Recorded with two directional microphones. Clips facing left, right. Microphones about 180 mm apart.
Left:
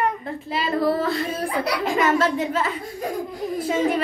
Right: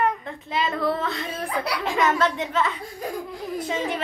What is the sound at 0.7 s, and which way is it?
A woman's voice, 40° left (ahead or behind).